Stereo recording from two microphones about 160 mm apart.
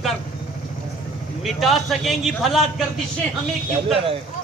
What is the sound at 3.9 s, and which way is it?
Speech, 35° right (ahead or behind).